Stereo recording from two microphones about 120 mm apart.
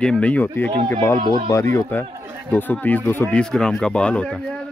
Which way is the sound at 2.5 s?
15° left (ahead or behind).